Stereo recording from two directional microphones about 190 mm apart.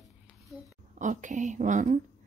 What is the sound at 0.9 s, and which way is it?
Speech, 40° right (ahead or behind).